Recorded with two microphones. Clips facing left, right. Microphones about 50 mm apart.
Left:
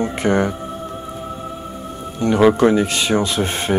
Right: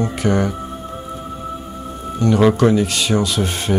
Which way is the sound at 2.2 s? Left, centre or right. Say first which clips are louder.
Left 1 dB; left.